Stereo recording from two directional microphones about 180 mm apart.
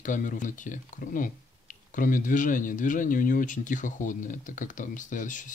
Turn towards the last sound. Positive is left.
turn(degrees=45)  # may be behind; listen again after turning